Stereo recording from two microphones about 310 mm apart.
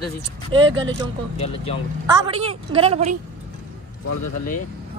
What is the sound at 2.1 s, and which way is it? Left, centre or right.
A woman's voice, centre.